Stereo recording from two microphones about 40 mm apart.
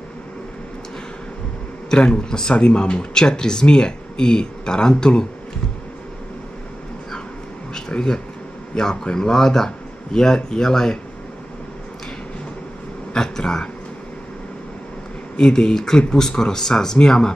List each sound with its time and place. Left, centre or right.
1.9 s speech: left
7.7 s a sound: centre
8.7 s speech: centre
13.1 s speech: centre
15.4 s speech: centre